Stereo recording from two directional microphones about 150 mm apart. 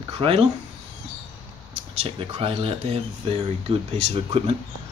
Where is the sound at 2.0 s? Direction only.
40° right (ahead or behind).